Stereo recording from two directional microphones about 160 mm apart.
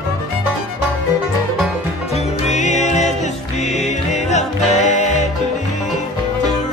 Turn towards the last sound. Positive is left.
turn(degrees=50)  # may be behind; listen again after turning